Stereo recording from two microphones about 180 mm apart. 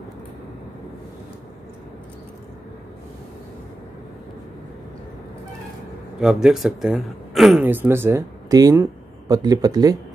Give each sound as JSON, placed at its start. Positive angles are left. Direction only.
{"t": 6.2, "sound": "speech", "side_deg": 0}